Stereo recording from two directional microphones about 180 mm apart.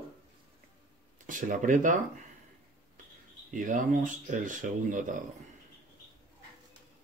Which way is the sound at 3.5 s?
45° right (ahead or behind).